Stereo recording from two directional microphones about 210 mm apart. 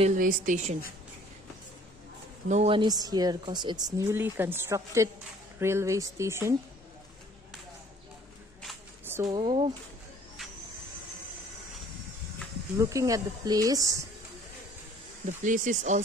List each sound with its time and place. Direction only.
0.0 s speech: 35° right (ahead or behind)
2.4 s a woman's voice: 30° right (ahead or behind); by 6.5 s 15° right (ahead or behind)
9.0 s a sound: 10° right (ahead or behind)
9.3 s a woman's voice: 25° right (ahead or behind)
12.7 s speech: 15° right (ahead or behind)
15.2 s speech: 40° right (ahead or behind)